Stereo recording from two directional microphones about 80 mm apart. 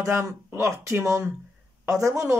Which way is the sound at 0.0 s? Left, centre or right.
Right.